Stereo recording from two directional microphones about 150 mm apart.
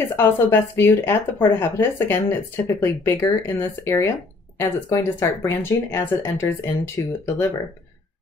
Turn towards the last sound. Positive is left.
turn(degrees=15)  # may be behind; listen again after turning